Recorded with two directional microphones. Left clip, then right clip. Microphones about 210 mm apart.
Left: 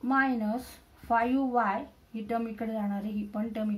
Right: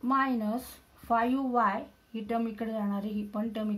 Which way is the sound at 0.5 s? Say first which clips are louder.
Left 1 dB; 40° right (ahead or behind).